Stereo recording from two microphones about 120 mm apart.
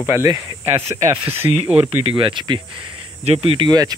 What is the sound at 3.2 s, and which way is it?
Speech, 50° right (ahead or behind).